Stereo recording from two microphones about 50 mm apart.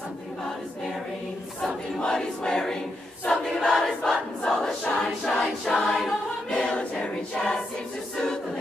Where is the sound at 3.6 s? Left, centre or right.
Centre.